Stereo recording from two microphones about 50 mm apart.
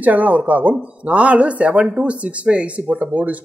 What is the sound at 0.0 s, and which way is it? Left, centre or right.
Speech, right.